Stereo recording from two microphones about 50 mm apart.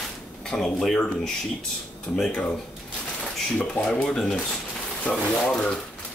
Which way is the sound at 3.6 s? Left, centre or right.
Left.